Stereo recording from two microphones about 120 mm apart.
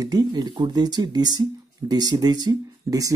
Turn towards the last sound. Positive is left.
turn(degrees=-30)  # may be behind; listen again after turning